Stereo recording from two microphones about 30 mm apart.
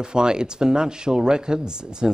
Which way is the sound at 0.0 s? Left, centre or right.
Right.